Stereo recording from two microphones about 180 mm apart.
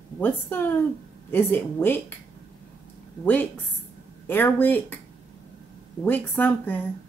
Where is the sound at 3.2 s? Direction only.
10° left (ahead or behind).